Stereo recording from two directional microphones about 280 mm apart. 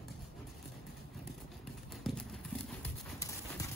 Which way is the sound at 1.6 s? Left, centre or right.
Centre.